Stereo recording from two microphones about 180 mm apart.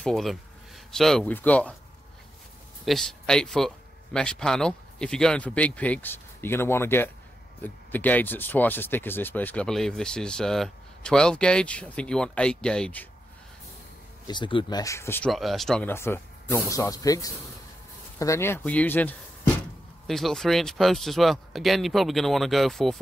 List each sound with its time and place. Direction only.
0.0 s speech: centre (ahead or behind)
2.8 s speech: centre (ahead or behind)
14.2 s speech: 25° left (ahead or behind)
15.3 s speech: centre (ahead or behind)